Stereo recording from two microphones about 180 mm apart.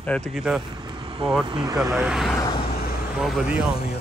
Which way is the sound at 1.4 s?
20° right (ahead or behind).